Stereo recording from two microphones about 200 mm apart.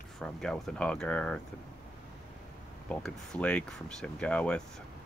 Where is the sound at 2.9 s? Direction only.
5° left (ahead or behind).